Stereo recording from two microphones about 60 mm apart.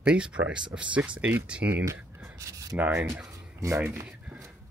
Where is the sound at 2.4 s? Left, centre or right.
Right.